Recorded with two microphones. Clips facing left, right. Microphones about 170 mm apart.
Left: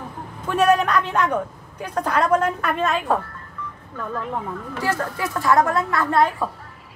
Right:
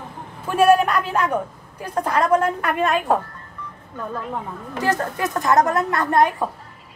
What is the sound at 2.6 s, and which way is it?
Speech, 15° right (ahead or behind).